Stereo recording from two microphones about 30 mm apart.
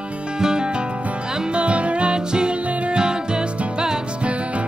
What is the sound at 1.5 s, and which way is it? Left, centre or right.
Music, right.